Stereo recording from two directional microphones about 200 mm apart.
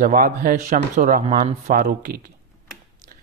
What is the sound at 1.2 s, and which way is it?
Speech, 30° right (ahead or behind).